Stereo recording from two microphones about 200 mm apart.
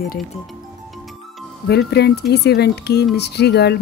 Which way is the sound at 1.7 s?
55° left (ahead or behind).